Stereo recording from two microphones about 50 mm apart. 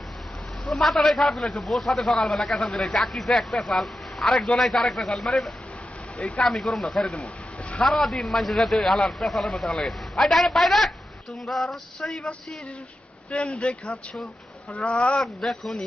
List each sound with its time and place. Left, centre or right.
0.7 s a man's voice: centre
13.3 s speech: left
15.1 s a man's voice: centre